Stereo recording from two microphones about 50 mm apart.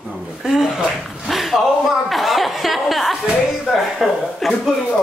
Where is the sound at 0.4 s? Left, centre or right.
Centre.